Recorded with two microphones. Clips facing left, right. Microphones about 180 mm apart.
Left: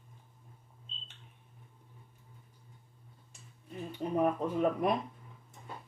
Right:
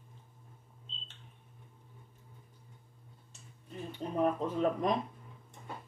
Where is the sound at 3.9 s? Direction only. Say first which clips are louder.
Left 1 dB; 10° left (ahead or behind).